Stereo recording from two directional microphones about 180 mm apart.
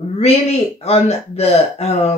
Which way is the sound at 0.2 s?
35° left (ahead or behind).